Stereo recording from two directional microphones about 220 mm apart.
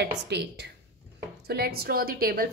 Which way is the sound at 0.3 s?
50° right (ahead or behind).